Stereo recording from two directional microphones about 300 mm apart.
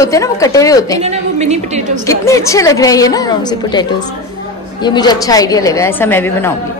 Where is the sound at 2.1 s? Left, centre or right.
Centre.